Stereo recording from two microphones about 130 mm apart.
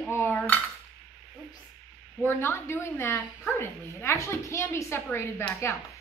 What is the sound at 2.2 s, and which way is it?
Speech, 20° left (ahead or behind).